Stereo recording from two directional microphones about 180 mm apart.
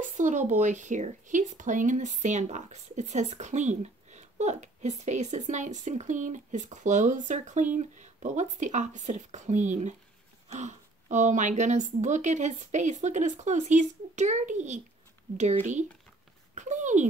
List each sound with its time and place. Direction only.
0.0 s speech: 45° right (ahead or behind)